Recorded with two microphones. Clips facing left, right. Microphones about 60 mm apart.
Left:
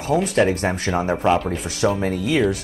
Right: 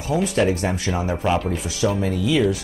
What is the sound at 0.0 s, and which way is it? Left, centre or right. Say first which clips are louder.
Speech: left 2 dB; left.